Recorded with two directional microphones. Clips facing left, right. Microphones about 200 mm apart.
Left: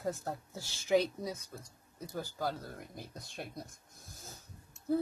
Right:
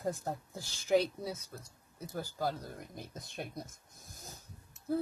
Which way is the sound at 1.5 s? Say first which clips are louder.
Even; centre (ahead or behind).